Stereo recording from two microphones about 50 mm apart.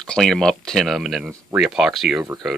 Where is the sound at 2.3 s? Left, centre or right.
Right.